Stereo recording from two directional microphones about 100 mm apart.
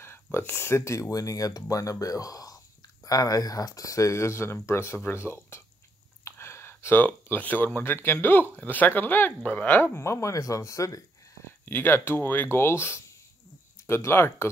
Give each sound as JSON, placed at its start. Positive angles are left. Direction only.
{"t": 0.0, "sound": "speech", "side_deg": 25}
{"t": 9.9, "sound": "speech", "side_deg": 30}
{"t": 11.6, "sound": "speech", "side_deg": 20}